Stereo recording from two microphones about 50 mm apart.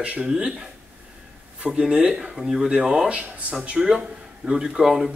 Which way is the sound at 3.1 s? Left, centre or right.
Right.